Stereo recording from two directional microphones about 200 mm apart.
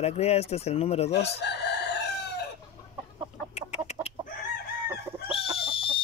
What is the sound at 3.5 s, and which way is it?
Chicken, 35° left (ahead or behind).